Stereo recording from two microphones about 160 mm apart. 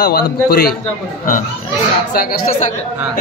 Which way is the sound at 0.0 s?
85° left.